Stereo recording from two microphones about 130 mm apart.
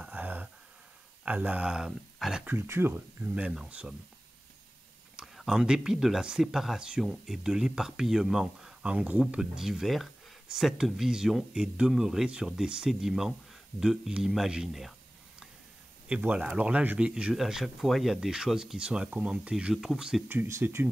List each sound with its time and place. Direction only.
0.0 s a sound: 10° right (ahead or behind)
1.2 s speech: 10° right (ahead or behind)
2.4 s speech: 20° right (ahead or behind)
5.1 s speech: centre (ahead or behind)
20.2 s speech: 20° right (ahead or behind)